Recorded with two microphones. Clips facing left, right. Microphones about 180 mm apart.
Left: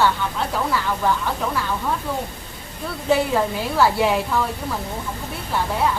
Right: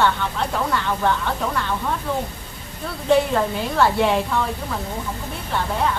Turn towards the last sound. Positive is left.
turn(degrees=5)  # may be behind; listen again after turning